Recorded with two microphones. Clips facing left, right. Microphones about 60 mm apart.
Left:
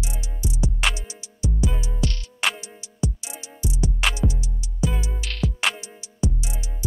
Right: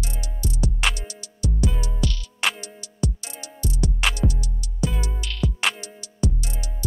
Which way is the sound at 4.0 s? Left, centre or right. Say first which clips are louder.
Even; centre.